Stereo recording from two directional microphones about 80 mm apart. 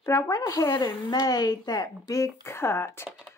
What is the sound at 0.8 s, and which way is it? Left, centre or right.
Speech, left.